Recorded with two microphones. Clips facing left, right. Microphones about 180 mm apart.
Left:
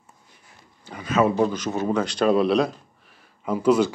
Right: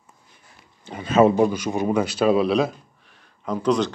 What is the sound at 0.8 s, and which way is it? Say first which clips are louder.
Speech: right 4 dB; 25° right (ahead or behind).